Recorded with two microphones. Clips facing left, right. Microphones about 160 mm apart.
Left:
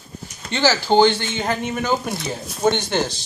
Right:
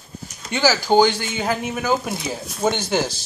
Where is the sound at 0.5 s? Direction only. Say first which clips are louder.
Even; 10° right (ahead or behind).